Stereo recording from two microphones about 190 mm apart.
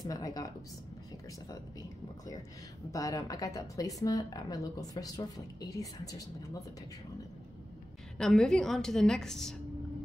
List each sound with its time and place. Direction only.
0.0 s speech: 20° left (ahead or behind)
1.5 s speech: 20° left (ahead or behind)
8.2 s a woman's voice: 5° left (ahead or behind)